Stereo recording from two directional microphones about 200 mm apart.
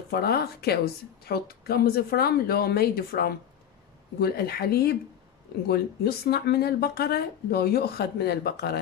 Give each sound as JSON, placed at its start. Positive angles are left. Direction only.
{"t": 0.1, "sound": "speech", "side_deg": 50}